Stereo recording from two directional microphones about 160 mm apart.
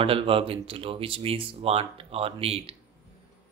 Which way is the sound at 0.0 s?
35° right (ahead or behind).